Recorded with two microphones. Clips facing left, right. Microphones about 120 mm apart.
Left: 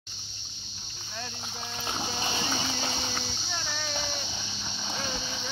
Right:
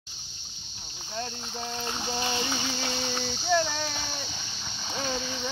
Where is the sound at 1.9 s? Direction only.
20° left (ahead or behind).